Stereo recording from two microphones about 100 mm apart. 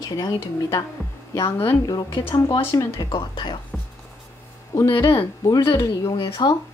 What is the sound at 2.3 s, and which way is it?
Speech, 30° left (ahead or behind).